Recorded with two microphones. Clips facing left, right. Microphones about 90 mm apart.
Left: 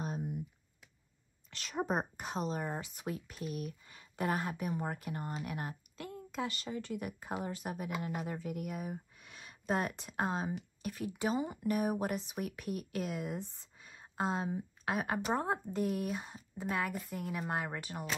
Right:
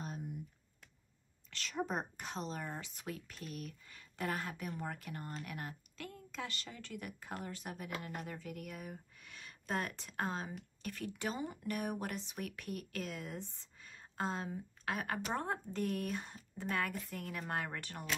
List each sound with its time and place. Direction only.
1.8 s a woman's voice: 45° left (ahead or behind)
2.1 s speech: 10° left (ahead or behind)